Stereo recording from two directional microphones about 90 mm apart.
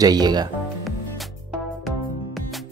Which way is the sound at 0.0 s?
50° right (ahead or behind).